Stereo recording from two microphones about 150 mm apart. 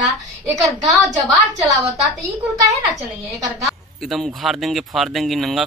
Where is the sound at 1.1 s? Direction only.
25° right (ahead or behind).